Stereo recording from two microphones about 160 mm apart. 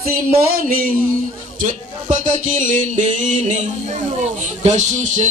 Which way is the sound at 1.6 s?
50° right (ahead or behind).